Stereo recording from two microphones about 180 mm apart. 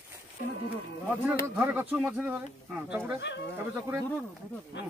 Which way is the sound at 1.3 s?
10° right (ahead or behind).